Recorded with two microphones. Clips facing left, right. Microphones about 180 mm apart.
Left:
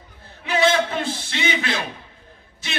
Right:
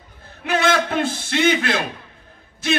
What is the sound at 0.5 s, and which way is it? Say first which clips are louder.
A man's voice: even; 50° right (ahead or behind).